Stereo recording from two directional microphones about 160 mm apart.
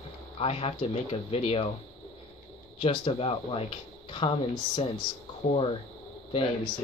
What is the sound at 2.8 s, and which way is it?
Speech, 35° left (ahead or behind).